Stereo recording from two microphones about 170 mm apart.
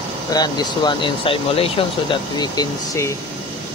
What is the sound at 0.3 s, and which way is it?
Speech, 25° left (ahead or behind).